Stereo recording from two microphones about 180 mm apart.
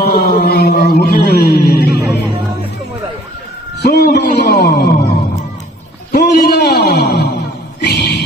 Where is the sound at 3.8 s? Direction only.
60° left (ahead or behind).